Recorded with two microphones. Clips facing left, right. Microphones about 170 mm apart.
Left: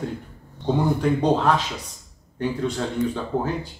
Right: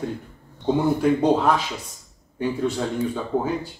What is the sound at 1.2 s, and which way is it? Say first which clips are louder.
Speech: left 1 dB; 10° right (ahead or behind).